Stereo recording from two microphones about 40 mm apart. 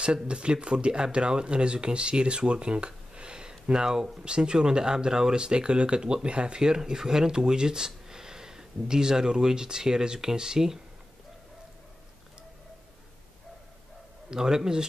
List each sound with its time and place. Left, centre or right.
0.0 s speech: right
14.3 s speech: centre